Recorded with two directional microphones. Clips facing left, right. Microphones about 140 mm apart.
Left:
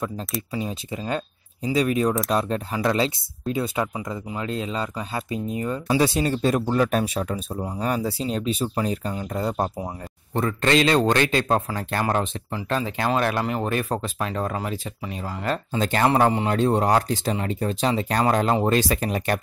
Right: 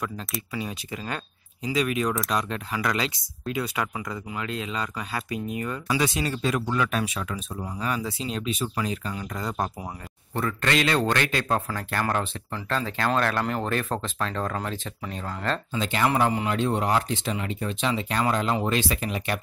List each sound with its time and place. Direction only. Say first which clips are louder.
0.5 s a man's voice: left 2 dB; 25° left (ahead or behind); by 15.6 s 10° left (ahead or behind)
15.7 s speech: left 5 dB; 40° left (ahead or behind)